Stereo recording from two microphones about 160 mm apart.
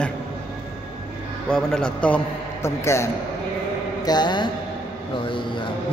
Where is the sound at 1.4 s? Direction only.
5° left (ahead or behind).